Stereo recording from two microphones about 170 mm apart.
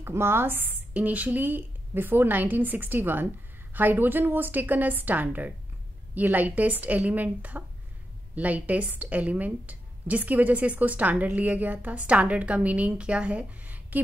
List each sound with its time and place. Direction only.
0.0 s a woman's voice: 15° right (ahead or behind)